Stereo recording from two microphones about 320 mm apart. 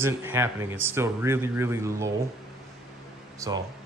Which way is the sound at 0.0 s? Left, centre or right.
Centre.